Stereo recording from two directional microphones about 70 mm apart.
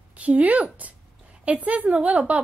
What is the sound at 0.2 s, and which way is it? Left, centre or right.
A woman's voice, right.